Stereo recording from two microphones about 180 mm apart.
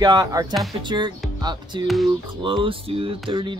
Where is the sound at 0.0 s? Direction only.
20° right (ahead or behind).